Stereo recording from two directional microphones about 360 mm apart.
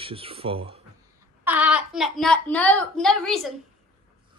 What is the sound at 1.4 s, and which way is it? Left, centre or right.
Speech, centre.